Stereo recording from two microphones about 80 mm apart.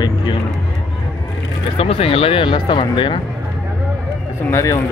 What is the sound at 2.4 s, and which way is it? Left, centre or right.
Speech, left.